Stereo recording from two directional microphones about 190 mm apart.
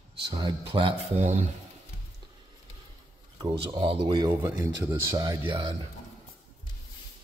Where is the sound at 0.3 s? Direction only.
25° right (ahead or behind).